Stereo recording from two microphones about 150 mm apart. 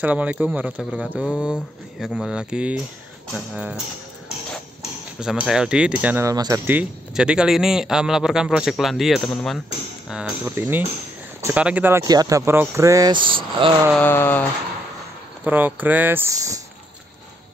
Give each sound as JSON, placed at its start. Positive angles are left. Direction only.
{"t": 0.0, "sound": "speech", "side_deg": -10}
{"t": 5.2, "sound": "speech", "side_deg": -5}
{"t": 6.2, "sound": "speech", "side_deg": -25}
{"t": 10.4, "sound": "speech", "side_deg": -10}
{"t": 12.0, "sound": "speech", "side_deg": -25}
{"t": 13.6, "sound": "mantra", "side_deg": -35}
{"t": 13.9, "sound": "a sound", "side_deg": 15}
{"t": 15.4, "sound": "speech", "side_deg": -10}